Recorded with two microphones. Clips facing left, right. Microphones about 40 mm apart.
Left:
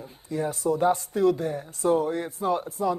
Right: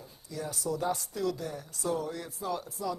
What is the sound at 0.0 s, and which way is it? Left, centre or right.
Speech, left.